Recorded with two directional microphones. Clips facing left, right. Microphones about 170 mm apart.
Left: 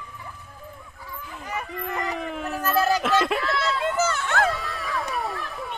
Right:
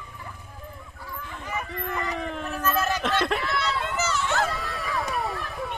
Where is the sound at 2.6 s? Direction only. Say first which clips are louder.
Left 4 dB; 35° left (ahead or behind).